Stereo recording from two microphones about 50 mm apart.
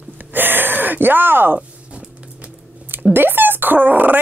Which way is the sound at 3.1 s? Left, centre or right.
Right.